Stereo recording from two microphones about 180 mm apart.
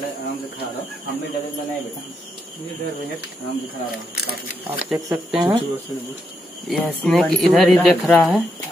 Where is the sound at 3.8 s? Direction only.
60° left (ahead or behind).